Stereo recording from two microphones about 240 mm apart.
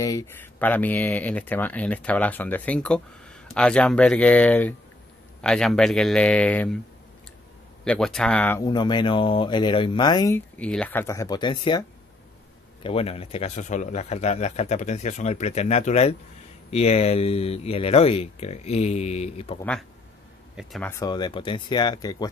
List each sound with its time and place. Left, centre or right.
0.0 s speech: centre
7.8 s speech: centre
12.8 s a man's voice: left
20.5 s speech: centre
20.9 s speech: centre